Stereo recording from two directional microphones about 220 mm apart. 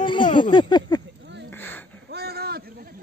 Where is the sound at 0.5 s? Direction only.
20° left (ahead or behind).